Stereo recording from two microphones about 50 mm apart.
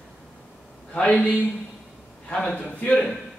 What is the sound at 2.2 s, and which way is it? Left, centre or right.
Speech, left.